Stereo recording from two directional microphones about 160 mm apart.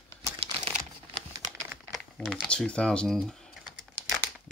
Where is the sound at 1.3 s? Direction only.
20° right (ahead or behind).